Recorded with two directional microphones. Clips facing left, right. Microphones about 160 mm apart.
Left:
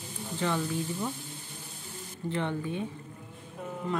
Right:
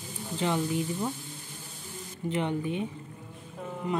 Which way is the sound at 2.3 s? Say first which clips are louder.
Right 2 dB; 15° right (ahead or behind).